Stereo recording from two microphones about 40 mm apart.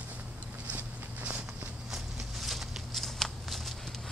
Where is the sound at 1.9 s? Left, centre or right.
Centre.